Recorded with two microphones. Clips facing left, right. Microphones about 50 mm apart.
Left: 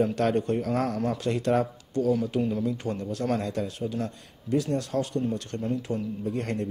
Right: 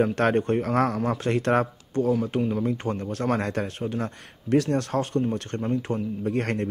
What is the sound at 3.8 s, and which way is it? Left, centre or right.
Speech, right.